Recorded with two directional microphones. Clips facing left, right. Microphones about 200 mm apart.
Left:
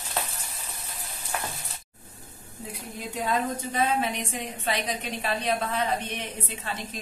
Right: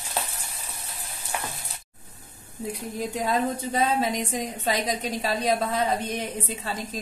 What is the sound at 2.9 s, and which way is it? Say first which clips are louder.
A woman's voice: right 2 dB; 35° right (ahead or behind).